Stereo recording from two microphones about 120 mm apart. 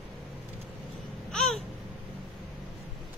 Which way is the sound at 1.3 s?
5° left (ahead or behind).